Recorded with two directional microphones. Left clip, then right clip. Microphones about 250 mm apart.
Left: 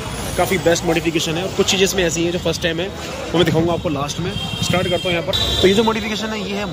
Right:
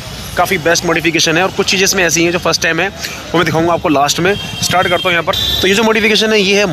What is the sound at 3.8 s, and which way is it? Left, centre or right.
Speech, right.